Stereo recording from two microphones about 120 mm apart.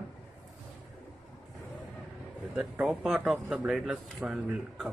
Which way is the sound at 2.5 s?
10° right (ahead or behind).